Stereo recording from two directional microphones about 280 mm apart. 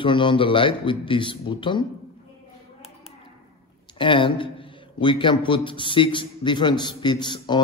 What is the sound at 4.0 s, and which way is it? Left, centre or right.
A man's voice, centre.